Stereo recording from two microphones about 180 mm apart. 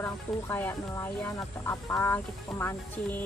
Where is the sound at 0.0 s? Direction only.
10° left (ahead or behind).